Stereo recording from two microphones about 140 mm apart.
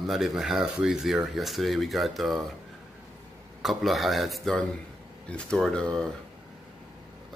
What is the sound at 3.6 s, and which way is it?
Speech, centre (ahead or behind).